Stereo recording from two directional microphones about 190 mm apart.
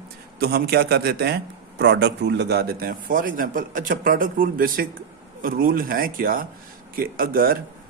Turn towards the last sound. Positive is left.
turn(degrees=-50)  # may be behind; listen again after turning